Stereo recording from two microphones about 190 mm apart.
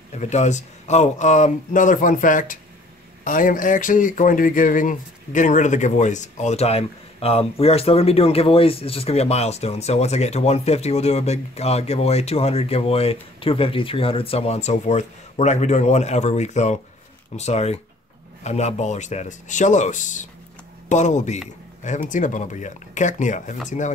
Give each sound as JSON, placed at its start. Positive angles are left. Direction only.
{"t": 0.1, "sound": "speech", "side_deg": 35}